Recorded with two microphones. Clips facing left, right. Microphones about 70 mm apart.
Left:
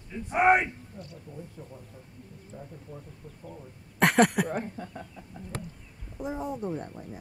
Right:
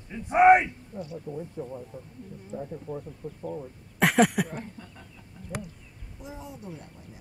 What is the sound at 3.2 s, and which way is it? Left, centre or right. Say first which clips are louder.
Speech: right 9 dB; right.